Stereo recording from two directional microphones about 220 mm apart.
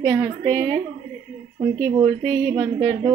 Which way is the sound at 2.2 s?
35° right (ahead or behind).